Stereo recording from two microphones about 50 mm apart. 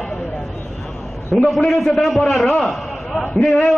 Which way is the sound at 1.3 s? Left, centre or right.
Centre.